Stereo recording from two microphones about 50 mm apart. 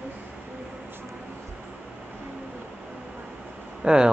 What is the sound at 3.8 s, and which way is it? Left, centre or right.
Speech, centre.